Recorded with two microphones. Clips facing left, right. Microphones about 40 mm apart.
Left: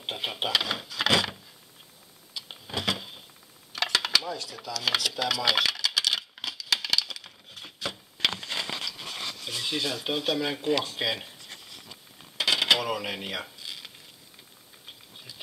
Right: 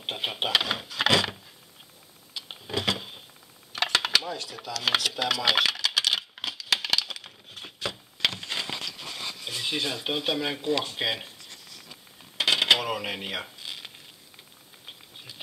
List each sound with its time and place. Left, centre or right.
0.0 s vehicle: centre
2.3 s a sound: centre
3.7 s dishes: centre
8.4 s a sound: centre
9.2 s speech: centre
12.4 s cash register: centre
13.6 s crumpling: centre